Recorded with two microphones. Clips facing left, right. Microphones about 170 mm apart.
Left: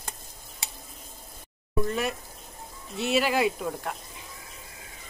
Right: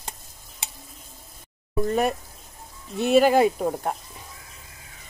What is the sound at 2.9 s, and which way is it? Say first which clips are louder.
Speech: right 7 dB; 50° right (ahead or behind).